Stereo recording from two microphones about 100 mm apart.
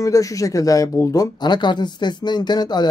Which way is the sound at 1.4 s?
50° left (ahead or behind).